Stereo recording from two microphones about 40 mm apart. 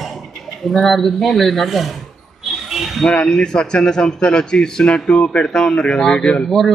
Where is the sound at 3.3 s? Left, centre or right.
Centre.